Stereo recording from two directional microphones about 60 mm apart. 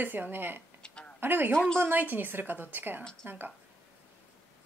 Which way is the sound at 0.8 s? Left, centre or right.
Centre.